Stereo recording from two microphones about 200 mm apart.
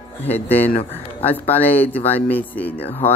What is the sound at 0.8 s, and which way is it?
Speech, 30° left (ahead or behind).